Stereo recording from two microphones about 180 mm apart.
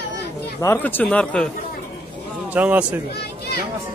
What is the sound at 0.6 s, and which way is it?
Speech, 10° left (ahead or behind).